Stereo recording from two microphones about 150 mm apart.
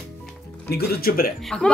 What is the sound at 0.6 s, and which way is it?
Speech, 90° left.